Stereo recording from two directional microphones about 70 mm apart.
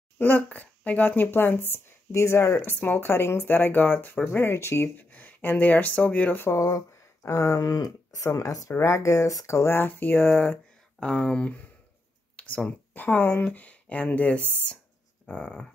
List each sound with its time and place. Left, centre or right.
0.2 s speech: left
5.1 s speech: left
6.4 s speech: left
9.8 s speech: left
11.0 s speech: centre
15.2 s a sound: centre